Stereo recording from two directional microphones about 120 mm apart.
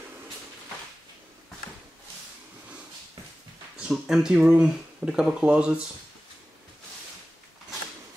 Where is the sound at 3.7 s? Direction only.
5° right (ahead or behind).